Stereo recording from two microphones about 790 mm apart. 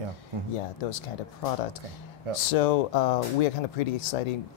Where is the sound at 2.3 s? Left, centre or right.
Left.